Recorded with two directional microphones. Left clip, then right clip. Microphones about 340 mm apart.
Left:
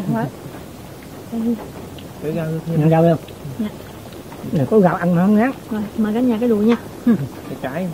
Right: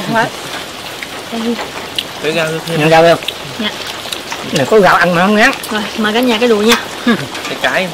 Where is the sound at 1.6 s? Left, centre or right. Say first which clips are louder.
Right 14 dB; centre.